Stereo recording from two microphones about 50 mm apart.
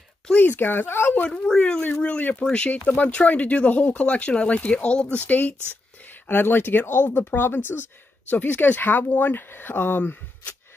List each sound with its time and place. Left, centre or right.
0.4 s speech: left
1.5 s speech: centre
6.2 s speech: left
8.3 s speech: left